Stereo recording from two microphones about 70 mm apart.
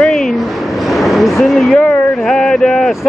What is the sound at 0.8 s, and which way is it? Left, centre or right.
Vehicle, centre.